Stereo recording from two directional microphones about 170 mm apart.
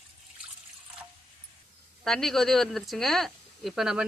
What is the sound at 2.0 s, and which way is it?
Speech, 5° left (ahead or behind).